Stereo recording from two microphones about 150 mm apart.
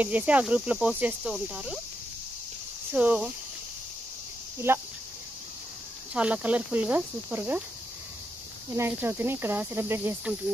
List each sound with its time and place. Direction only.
0.0 s cricket: 10° right (ahead or behind)
2.9 s cricket: 10° right (ahead or behind)
4.7 s cricket: 15° right (ahead or behind)
6.1 s cricket: 10° right (ahead or behind)
8.6 s cricket: 15° right (ahead or behind)